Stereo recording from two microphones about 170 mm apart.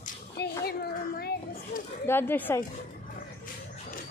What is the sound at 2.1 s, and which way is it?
Speech, 15° left (ahead or behind).